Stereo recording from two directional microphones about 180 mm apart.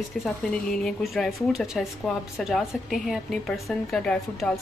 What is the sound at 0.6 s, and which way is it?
A woman's voice, centre (ahead or behind).